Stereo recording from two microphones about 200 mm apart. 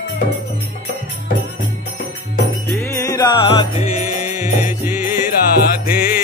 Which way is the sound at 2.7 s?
15° left (ahead or behind).